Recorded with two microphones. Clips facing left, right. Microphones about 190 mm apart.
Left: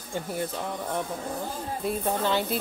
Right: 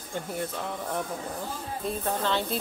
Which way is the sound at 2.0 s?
10° left (ahead or behind).